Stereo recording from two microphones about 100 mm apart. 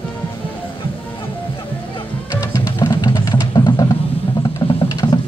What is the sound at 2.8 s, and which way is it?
Music, 45° left (ahead or behind).